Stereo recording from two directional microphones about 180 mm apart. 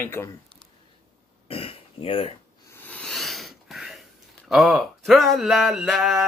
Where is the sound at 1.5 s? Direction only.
30° left (ahead or behind).